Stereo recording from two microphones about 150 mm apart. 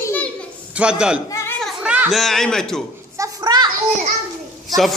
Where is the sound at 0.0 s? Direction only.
10° left (ahead or behind).